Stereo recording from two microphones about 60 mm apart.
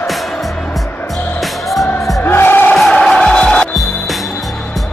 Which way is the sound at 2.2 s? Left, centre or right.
Left.